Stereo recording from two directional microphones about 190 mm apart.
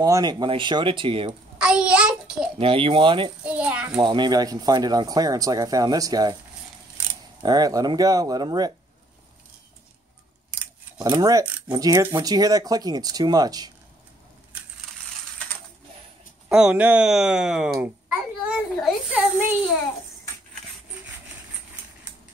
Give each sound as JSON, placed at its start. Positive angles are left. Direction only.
{"t": 0.0, "sound": "speech", "side_deg": -20}
{"t": 1.6, "sound": "a child's voice", "side_deg": -5}
{"t": 2.6, "sound": "speech", "side_deg": -30}
{"t": 3.4, "sound": "a child's voice", "side_deg": -5}
{"t": 4.0, "sound": "speech", "side_deg": -25}
{"t": 7.4, "sound": "speech", "side_deg": -20}
{"t": 11.0, "sound": "speech", "side_deg": -20}
{"t": 16.4, "sound": "speech", "side_deg": -5}
{"t": 17.7, "sound": "a sound", "side_deg": -10}